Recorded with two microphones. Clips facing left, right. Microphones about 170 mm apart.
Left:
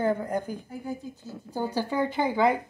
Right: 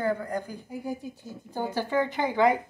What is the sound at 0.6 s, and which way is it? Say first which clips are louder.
Speech: right 1 dB; 10° right (ahead or behind).